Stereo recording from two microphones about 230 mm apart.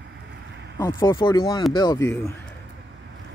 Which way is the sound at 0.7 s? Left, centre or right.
Centre.